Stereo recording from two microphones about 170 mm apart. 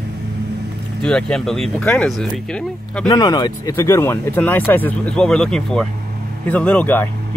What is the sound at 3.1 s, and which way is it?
Speech, 25° left (ahead or behind).